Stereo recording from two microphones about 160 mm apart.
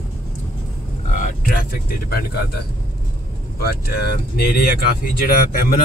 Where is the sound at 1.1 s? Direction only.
60° left (ahead or behind).